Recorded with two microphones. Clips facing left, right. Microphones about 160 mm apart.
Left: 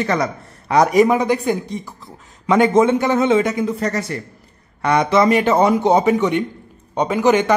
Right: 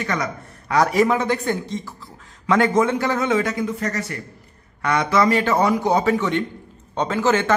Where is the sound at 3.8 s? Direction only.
35° left (ahead or behind); by 7.5 s 15° left (ahead or behind).